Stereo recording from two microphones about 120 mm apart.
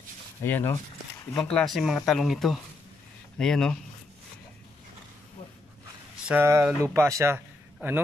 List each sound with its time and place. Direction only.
0.4 s speech: 20° left (ahead or behind)
1.4 s speech: 5° left (ahead or behind)
6.2 s speech: 20° right (ahead or behind)